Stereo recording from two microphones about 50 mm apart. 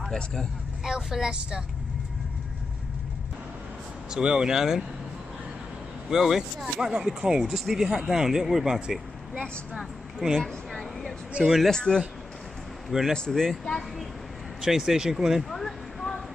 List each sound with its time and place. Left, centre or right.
0.1 s speech: centre
0.8 s speech: centre
4.1 s speech: centre
6.0 s speech: centre
10.4 s a sound: centre
11.4 s speech: right
11.7 s speech: centre
13.1 s speech: centre
14.6 s speech: centre
15.5 s a sound: centre